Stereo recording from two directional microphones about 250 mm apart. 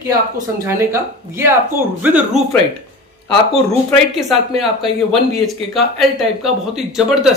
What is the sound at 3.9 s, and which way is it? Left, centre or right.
Speech, centre.